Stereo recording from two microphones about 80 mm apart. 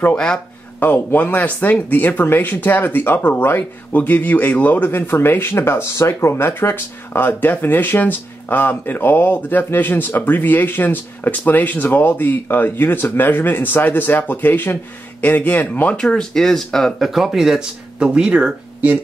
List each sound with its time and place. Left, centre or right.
0.1 s speech: centre
0.7 s speech: left; by 18.5 s centre